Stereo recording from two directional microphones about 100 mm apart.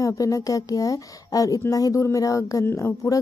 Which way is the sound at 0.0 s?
35° left (ahead or behind).